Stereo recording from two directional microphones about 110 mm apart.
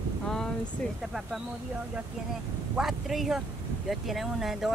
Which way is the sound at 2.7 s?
5° right (ahead or behind).